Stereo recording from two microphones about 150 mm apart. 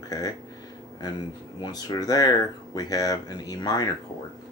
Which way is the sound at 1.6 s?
25° left (ahead or behind).